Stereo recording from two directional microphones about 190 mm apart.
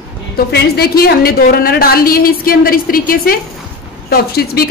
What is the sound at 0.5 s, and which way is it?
A woman's voice, 55° left (ahead or behind).